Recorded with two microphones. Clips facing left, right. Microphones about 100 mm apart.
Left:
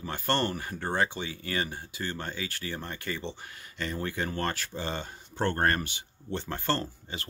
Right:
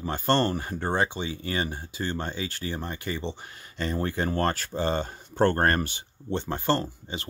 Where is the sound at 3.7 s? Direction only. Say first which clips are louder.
Right 5 dB; 30° right (ahead or behind).